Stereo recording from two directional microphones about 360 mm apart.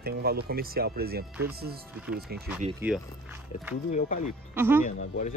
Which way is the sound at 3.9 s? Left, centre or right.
Left.